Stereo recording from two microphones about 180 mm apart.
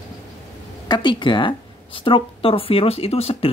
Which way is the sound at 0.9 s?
25° left (ahead or behind).